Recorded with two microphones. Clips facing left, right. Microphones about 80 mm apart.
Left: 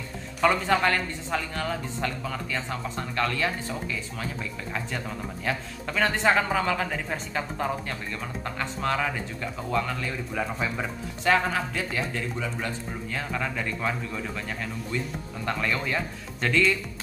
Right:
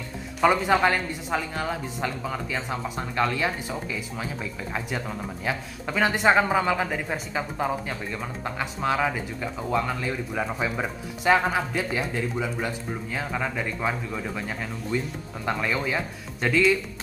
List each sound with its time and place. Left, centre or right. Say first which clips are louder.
0.4 s speech: right 2 dB; centre